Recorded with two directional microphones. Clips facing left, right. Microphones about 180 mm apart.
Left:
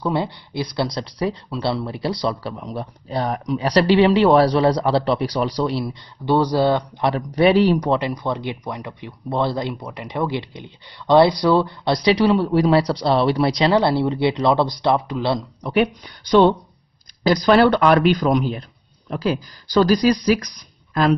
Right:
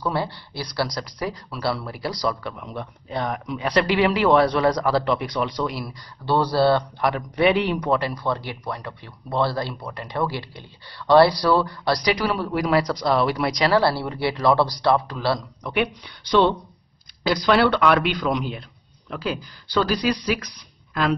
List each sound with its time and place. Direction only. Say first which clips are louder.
0.0 s speech: left 3 dB; 20° left (ahead or behind)
5.9 s speech: left 4 dB; 15° left (ahead or behind)
7.1 s speech: left 4 dB; 35° left (ahead or behind)
7.9 s speech: left 2 dB; 20° left (ahead or behind)
15.6 s speech: left 8 dB; 40° left (ahead or behind)